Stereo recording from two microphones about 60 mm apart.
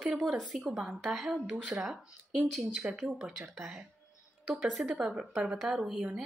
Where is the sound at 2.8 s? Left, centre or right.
Right.